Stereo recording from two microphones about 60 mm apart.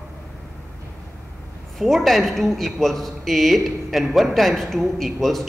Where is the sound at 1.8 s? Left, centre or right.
Centre.